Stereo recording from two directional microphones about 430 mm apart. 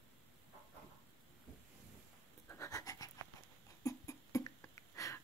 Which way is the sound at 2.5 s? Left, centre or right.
Centre.